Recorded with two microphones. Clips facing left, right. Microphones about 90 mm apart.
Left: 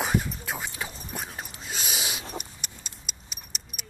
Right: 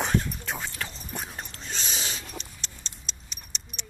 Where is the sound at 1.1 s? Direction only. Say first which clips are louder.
Even; centre (ahead or behind).